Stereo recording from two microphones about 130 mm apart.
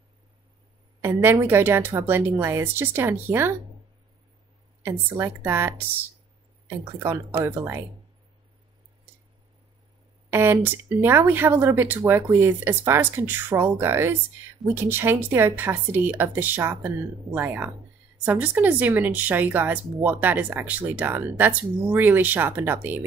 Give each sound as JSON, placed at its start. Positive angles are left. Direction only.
{"t": 1.0, "sound": "speech", "side_deg": -20}
{"t": 4.8, "sound": "speech", "side_deg": -20}
{"t": 10.3, "sound": "speech", "side_deg": -15}